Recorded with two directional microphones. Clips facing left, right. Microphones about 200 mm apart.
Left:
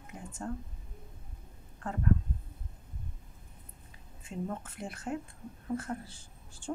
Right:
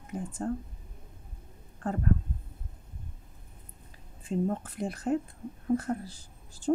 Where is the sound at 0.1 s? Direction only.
35° right (ahead or behind).